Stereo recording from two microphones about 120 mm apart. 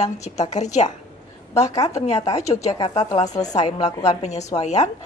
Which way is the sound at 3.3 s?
30° left (ahead or behind).